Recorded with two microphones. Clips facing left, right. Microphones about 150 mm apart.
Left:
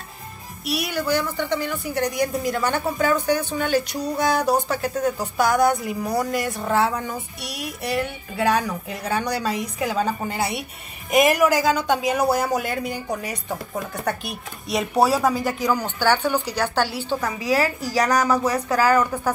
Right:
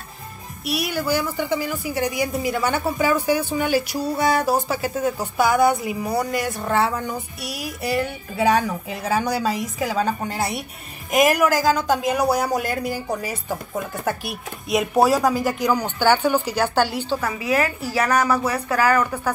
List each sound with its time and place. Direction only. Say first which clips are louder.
0.7 s a woman's voice: right 1 dB; centre (ahead or behind)
17.4 s a woman's voice: left 2 dB; 40° left (ahead or behind)
17.9 s a woman's voice: even; 15° left (ahead or behind)